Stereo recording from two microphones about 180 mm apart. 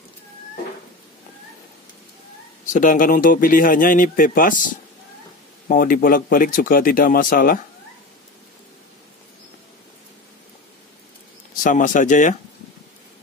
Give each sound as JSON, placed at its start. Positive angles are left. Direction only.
{"t": 2.6, "sound": "speech", "side_deg": 45}
{"t": 11.6, "sound": "speech", "side_deg": 45}